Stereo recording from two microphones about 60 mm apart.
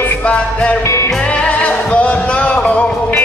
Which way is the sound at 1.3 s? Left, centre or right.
Left.